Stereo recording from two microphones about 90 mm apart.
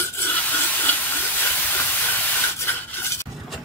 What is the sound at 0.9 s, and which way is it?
Stir, 20° left (ahead or behind).